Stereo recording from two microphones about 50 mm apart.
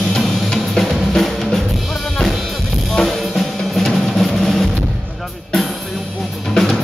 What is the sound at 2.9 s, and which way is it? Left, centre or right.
Drum kit, centre.